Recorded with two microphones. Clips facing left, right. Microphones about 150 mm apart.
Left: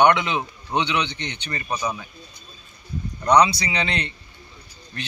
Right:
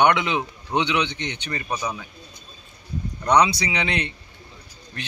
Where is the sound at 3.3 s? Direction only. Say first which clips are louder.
Left 1 dB; 15° right (ahead or behind).